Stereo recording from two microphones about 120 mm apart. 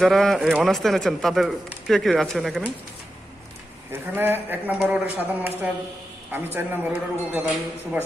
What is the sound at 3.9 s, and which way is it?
A man's voice, 20° right (ahead or behind).